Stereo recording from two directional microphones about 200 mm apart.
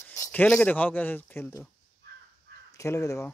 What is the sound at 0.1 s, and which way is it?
Speech, 10° left (ahead or behind).